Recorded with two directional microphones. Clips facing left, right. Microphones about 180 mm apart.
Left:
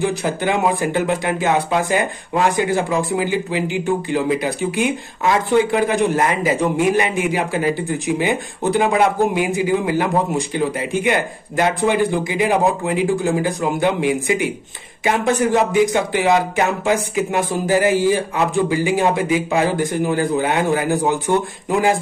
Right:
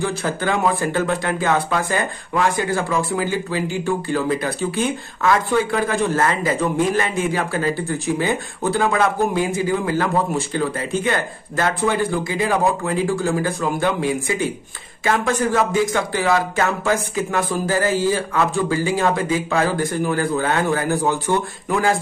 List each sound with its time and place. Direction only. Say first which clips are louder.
0.0 s speech: left 3 dB; 15° left (ahead or behind)